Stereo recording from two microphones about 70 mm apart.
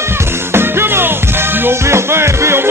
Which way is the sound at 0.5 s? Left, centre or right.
Right.